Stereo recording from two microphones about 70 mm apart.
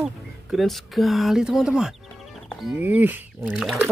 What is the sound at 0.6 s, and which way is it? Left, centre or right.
Speech, centre.